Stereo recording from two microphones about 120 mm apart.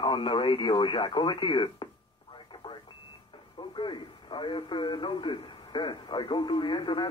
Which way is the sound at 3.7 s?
40° left (ahead or behind).